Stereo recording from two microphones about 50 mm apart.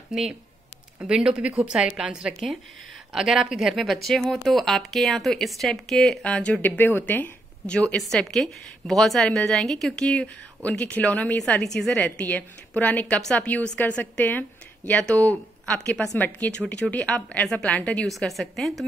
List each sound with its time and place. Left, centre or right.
0.1 s a woman's voice: centre
6.2 s a woman's voice: left
6.6 s a woman's voice: left
7.6 s a woman's voice: left
8.1 s a woman's voice: centre
10.1 s a woman's voice: left
11.5 s a woman's voice: centre
12.0 s a woman's voice: left
13.1 s a woman's voice: centre
13.7 s a woman's voice: left
15.0 s a woman's voice: left
16.5 s a woman's voice: left
18.0 s speech: centre